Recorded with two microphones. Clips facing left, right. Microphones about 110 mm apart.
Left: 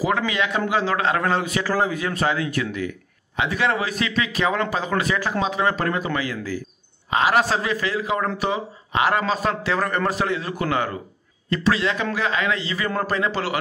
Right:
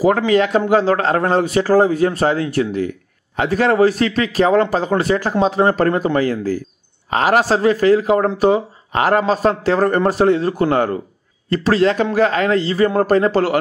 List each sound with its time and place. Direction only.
0.0 s a man's voice: 40° right (ahead or behind)